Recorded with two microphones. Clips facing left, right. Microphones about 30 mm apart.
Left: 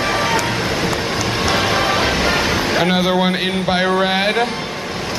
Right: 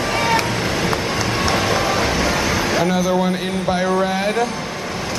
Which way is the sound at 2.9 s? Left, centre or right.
Left.